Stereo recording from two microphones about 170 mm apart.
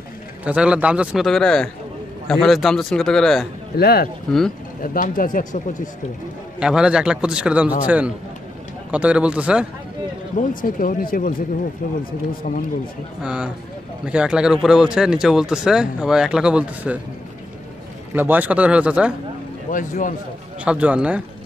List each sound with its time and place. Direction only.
0.5 s speech: 5° right (ahead or behind)
3.7 s speech: 65° left (ahead or behind)
6.6 s speech: 5° right (ahead or behind)
10.5 s speech: 55° left (ahead or behind)
13.2 s speech: 5° right (ahead or behind)
18.1 s speech: 10° right (ahead or behind)
19.7 s speech: 50° left (ahead or behind)
20.6 s speech: 10° right (ahead or behind)